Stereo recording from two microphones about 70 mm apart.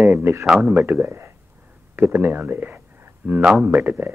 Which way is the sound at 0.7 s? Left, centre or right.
Right.